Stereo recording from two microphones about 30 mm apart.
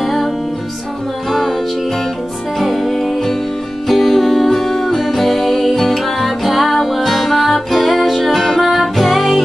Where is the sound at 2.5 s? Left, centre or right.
Centre.